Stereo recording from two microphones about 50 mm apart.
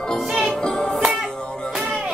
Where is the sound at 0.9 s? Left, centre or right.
Centre.